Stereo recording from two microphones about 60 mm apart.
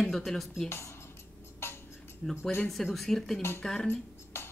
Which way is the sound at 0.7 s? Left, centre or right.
Left.